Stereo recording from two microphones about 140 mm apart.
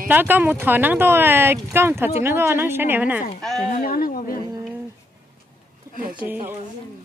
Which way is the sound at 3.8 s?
90° left.